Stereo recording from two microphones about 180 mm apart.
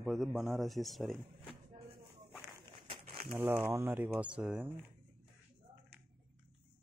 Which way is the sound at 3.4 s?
10° right (ahead or behind).